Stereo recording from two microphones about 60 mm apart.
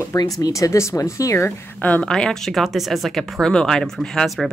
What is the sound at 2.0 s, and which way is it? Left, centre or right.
Speech, centre.